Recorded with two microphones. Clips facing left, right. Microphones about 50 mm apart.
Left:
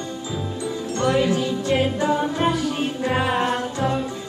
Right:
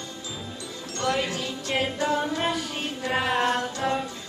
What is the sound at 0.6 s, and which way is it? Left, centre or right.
Music, left.